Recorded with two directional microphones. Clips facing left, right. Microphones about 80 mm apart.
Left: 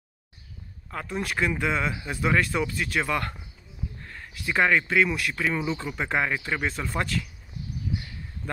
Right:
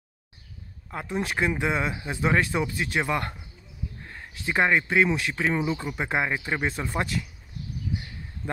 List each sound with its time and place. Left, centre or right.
0.9 s speech: right